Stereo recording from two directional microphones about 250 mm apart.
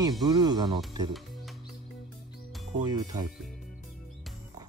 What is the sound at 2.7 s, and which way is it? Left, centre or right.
Speech, centre.